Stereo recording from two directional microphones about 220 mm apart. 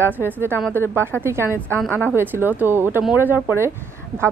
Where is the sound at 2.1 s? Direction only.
10° right (ahead or behind).